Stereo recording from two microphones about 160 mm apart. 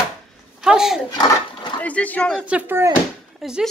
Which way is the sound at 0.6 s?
5° right (ahead or behind).